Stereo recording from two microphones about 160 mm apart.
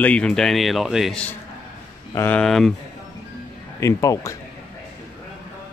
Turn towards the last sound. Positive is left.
turn(degrees=20)  # may be behind; listen again after turning